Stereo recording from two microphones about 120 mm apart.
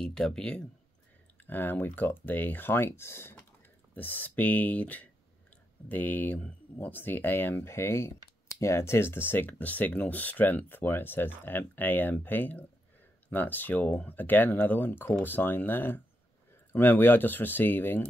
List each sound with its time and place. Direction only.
0.0 s speech: 5° left (ahead or behind)